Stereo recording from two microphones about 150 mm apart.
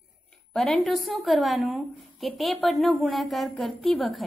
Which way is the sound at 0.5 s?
5° left (ahead or behind).